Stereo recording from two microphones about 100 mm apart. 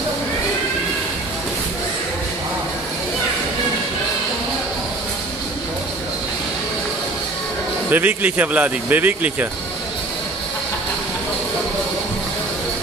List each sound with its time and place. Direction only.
7.9 s speech: 15° right (ahead or behind)